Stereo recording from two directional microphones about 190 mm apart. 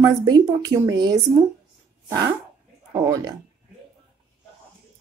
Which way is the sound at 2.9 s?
20° right (ahead or behind).